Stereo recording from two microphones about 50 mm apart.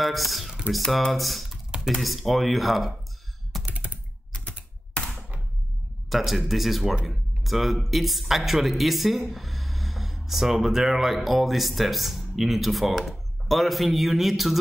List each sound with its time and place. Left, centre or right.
0.0 s speech: centre
3.6 s computer keyboard: right
6.0 s speech: centre